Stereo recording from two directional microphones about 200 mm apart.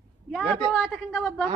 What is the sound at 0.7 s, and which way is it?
Speech, centre (ahead or behind).